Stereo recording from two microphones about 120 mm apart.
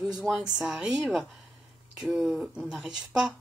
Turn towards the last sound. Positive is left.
turn(degrees=-5)  # may be behind; listen again after turning